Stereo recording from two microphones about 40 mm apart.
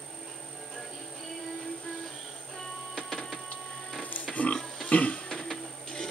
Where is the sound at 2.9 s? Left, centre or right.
Centre.